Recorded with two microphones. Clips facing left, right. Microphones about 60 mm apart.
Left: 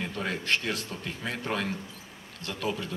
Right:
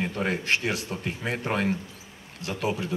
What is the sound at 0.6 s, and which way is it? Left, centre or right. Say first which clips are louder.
A man's voice: right 4 dB; centre.